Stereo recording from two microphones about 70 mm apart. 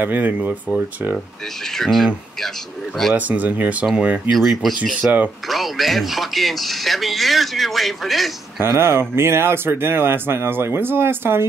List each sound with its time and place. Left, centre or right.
0.0 s speech: right
1.8 s speech: centre
3.2 s speech: right
4.3 s speech: centre
5.0 s speech: centre
5.5 s speech: centre
8.6 s speech: right